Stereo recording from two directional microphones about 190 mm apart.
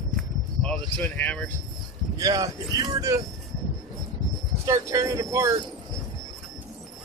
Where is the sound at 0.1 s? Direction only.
5° left (ahead or behind).